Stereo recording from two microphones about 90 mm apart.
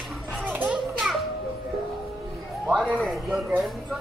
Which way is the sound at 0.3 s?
15° right (ahead or behind).